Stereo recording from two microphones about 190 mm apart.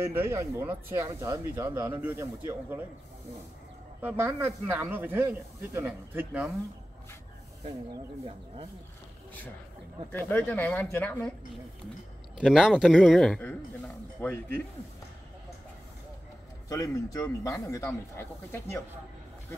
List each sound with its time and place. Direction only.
0.0 s speech: 15° right (ahead or behind)
4.0 s speech: 10° right (ahead or behind)
10.1 s speech: 10° left (ahead or behind)
12.4 s a man's voice: centre (ahead or behind)
16.6 s speech: 15° left (ahead or behind)